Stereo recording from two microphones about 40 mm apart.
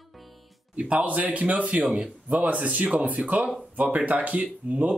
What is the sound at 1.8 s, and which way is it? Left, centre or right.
Speech, centre.